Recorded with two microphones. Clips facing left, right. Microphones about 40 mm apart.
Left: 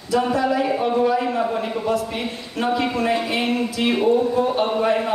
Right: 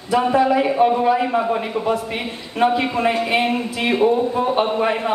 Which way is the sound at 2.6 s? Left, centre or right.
Right.